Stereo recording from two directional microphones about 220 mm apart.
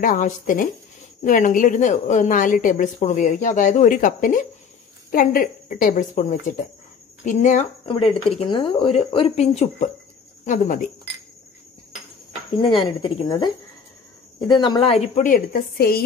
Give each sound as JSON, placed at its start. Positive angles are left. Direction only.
{"t": 0.0, "sound": "a woman's voice", "side_deg": 40}
{"t": 12.6, "sound": "speech", "side_deg": 20}
{"t": 14.6, "sound": "a woman's voice", "side_deg": 20}